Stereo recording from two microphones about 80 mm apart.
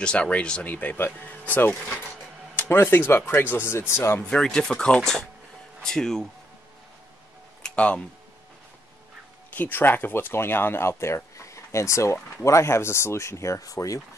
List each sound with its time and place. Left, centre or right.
0.0 s speech: centre; by 4.2 s left
4.3 s speech: centre
7.6 s a sound: centre
9.6 s speech: left